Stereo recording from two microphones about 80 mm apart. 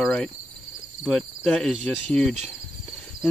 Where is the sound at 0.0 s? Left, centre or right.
Centre.